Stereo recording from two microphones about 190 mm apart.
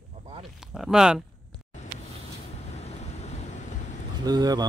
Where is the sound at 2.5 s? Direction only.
35° left (ahead or behind).